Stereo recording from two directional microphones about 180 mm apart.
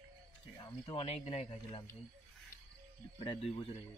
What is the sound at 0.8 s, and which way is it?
Speech, 35° left (ahead or behind).